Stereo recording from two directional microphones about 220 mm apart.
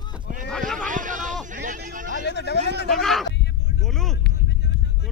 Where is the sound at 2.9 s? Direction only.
Centre (ahead or behind).